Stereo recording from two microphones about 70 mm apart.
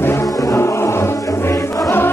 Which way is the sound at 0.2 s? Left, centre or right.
Left.